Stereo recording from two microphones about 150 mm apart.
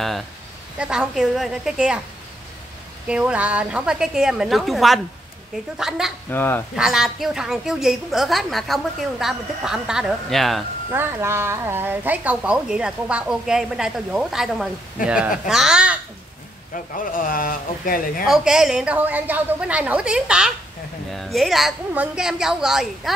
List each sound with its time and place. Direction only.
0.7 s a woman's voice: 5° right (ahead or behind)
3.1 s a woman's voice: 10° right (ahead or behind)
6.3 s speech: 15° left (ahead or behind)
6.7 s a woman's voice: 5° right (ahead or behind)
10.9 s speech: 15° right (ahead or behind)
16.7 s speech: 65° left (ahead or behind)
18.2 s a woman's voice: 5° right (ahead or behind)